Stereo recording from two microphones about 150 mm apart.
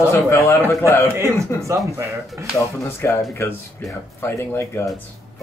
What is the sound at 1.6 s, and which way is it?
Speech, 20° right (ahead or behind).